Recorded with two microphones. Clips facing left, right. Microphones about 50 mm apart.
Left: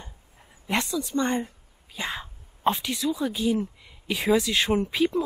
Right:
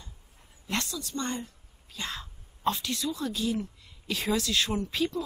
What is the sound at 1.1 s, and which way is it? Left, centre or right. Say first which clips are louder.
Speech: left 7 dB; left.